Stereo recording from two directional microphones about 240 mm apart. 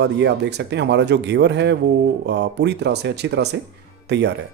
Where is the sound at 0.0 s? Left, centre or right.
Right.